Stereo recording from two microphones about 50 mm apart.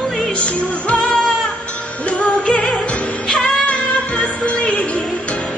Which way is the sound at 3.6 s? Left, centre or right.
Left.